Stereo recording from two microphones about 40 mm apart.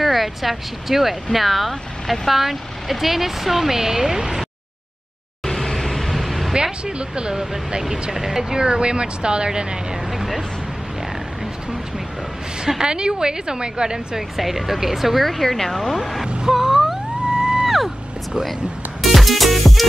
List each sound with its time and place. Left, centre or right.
0.0 s speech: centre
5.4 s vehicle: centre
6.5 s speech: right
8.1 s speech: centre
10.1 s speech: centre
12.6 s a woman's voice: centre
14.3 s speech: centre
16.4 s music: centre
17.6 s vehicle: centre
18.9 s music: centre